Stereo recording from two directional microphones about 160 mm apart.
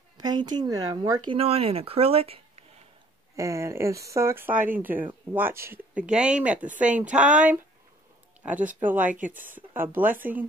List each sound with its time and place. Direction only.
0.2 s speech: 25° right (ahead or behind)
1.3 s speech: 35° right (ahead or behind)
3.3 s speech: 20° right (ahead or behind)
8.8 s speech: 10° right (ahead or behind)